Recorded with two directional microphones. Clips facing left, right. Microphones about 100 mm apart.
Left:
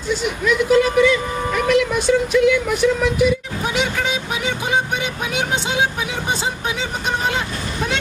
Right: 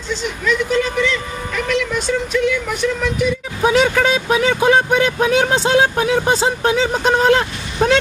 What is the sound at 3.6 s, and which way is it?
Speech, 80° right.